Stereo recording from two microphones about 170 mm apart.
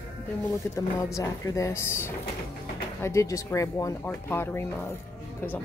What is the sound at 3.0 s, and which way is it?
Music, 20° left (ahead or behind).